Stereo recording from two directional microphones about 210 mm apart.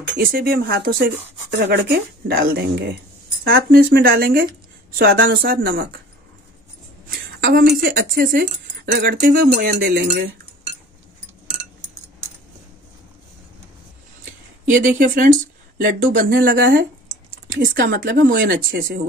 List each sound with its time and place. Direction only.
0.2 s speech: 45° right (ahead or behind)
7.1 s speech: 45° right (ahead or behind)
14.7 s speech: 40° right (ahead or behind)
16.3 s speech: 50° right (ahead or behind)
17.5 s speech: 40° right (ahead or behind)